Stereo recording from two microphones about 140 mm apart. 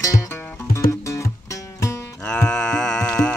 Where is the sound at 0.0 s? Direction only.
20° left (ahead or behind).